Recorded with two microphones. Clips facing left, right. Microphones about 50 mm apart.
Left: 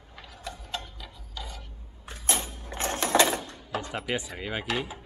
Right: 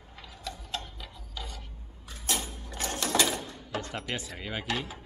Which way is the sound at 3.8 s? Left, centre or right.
Centre.